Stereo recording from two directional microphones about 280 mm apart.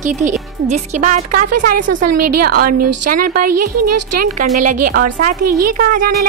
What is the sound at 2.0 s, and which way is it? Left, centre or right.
Speech, right.